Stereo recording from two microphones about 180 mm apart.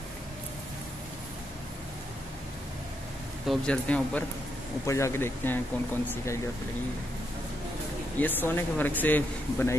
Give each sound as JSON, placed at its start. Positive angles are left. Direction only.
{"t": 3.4, "sound": "speech", "side_deg": 5}
{"t": 8.2, "sound": "speech", "side_deg": 10}